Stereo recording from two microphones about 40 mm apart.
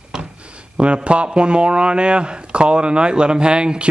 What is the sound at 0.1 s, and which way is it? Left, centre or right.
Speech, right.